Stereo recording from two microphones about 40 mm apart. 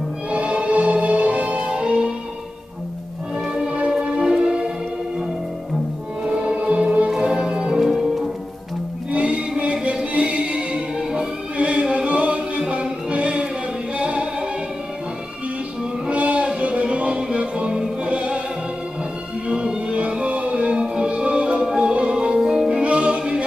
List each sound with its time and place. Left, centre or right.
0.3 s music: right
3.7 s music: right
6.2 s music: right
7.2 s music: centre
9.1 s music: right
11.5 s choir: right
13.9 s music: right
16.1 s music: right
19.4 s music: right
21.5 s music: centre
22.7 s music: right